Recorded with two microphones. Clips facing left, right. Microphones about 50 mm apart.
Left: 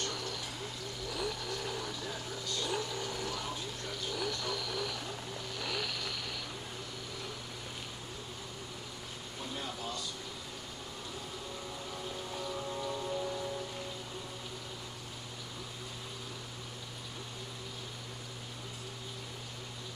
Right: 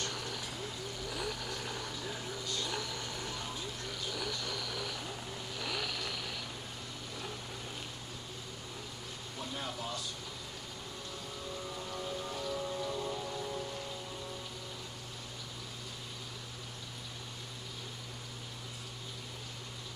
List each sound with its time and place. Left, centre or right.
1.0 s vehicle: centre
2.5 s vehicle: left
2.9 s a sound: centre
3.4 s vehicle: centre
11.9 s rain: centre